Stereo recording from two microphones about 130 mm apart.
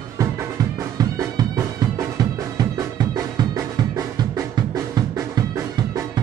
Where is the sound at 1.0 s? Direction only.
25° right (ahead or behind).